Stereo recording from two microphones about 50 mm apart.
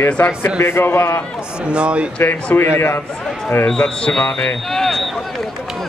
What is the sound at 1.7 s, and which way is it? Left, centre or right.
Speech, right.